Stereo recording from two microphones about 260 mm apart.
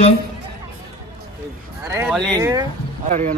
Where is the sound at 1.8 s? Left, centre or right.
Centre.